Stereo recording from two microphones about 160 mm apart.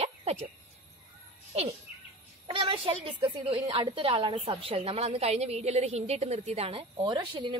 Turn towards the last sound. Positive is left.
turn(degrees=-30)  # may be behind; listen again after turning